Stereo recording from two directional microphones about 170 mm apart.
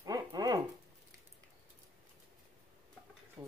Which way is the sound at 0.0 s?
20° right (ahead or behind).